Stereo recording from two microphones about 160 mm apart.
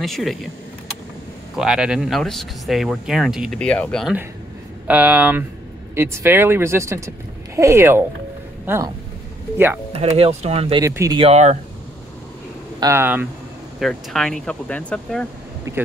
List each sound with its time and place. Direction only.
0.0 s speech: centre (ahead or behind)
1.6 s speech: 5° right (ahead or behind)
4.8 s speech: 10° right (ahead or behind)
9.9 s speech: 40° right (ahead or behind)
10.8 s speech: 20° right (ahead or behind)
11.1 s speech: 40° right (ahead or behind)
12.8 s speech: 15° right (ahead or behind)
13.7 s speech: centre (ahead or behind)
15.7 s speech: 15° right (ahead or behind)